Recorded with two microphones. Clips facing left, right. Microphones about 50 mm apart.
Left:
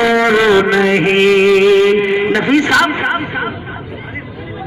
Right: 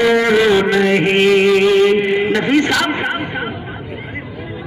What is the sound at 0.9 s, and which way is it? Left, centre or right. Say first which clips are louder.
Music: left 2 dB; left.